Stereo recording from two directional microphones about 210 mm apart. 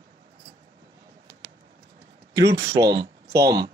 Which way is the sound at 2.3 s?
15° right (ahead or behind).